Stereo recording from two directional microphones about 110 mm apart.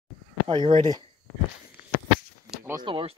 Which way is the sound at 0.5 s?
50° right (ahead or behind).